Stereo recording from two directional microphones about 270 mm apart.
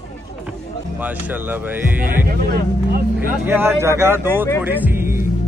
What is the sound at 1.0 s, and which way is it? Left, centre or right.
Speech, centre.